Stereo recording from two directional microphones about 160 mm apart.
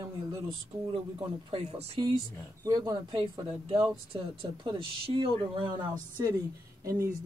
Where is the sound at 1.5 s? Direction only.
40° right (ahead or behind).